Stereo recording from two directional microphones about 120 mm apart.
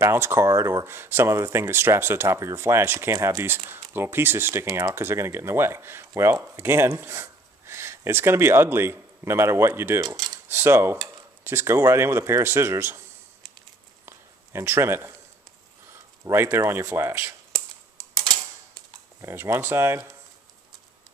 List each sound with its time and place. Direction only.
0.0 s speech: 20° right (ahead or behind)
14.0 s a sound: 20° right (ahead or behind)
15.9 s speech: 20° right (ahead or behind)
19.2 s speech: 20° right (ahead or behind)